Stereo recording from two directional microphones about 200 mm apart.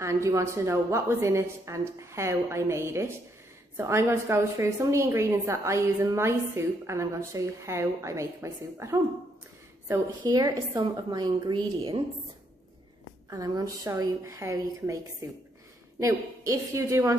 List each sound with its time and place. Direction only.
0.0 s a woman's voice: 15° right (ahead or behind)
13.3 s a woman's voice: 15° right (ahead or behind)
16.0 s a woman's voice: 15° right (ahead or behind)